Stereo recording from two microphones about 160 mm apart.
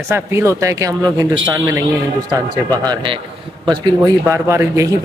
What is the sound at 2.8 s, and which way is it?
Speech, 30° right (ahead or behind).